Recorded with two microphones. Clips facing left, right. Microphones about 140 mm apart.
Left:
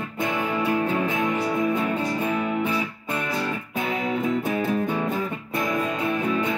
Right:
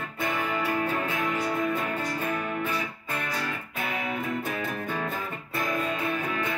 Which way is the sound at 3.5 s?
25° left (ahead or behind).